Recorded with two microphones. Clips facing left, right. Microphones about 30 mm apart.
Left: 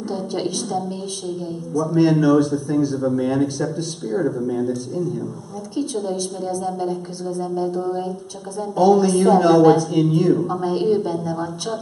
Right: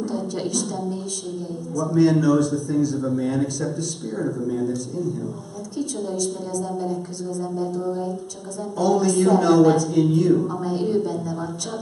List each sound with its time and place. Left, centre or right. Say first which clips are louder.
0.1 s a woman's voice: left 2 dB; left
3.0 s a man's voice: left 3 dB; centre
5.8 s a woman's voice: left 3 dB; left